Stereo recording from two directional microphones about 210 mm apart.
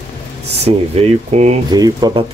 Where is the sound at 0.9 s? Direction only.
30° right (ahead or behind).